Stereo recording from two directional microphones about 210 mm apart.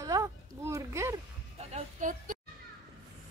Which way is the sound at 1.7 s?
35° right (ahead or behind).